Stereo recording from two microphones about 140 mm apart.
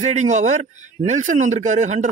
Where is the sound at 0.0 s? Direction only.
55° right (ahead or behind).